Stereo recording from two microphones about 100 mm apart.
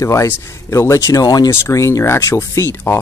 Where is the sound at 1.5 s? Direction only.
30° left (ahead or behind).